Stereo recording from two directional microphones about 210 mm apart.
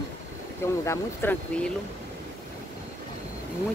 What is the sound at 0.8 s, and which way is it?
Speech, 10° left (ahead or behind).